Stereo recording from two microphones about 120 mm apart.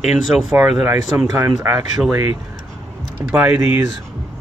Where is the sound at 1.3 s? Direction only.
20° right (ahead or behind).